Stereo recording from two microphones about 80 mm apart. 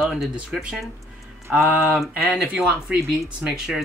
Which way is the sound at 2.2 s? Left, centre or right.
Centre.